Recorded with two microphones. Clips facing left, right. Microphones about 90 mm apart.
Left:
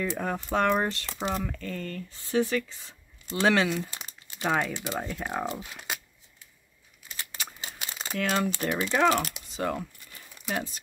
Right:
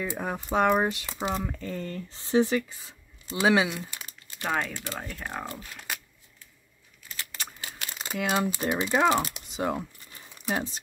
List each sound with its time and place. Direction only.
0.0 s speech: 10° right (ahead or behind)
4.3 s speech: 10° left (ahead or behind)
4.7 s speech: 15° left (ahead or behind)
7.6 s crumpling: 15° left (ahead or behind)
8.1 s speech: 10° right (ahead or behind)